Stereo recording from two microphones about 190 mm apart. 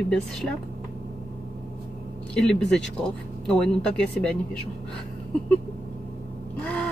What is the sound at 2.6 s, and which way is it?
Speech, 65° left (ahead or behind).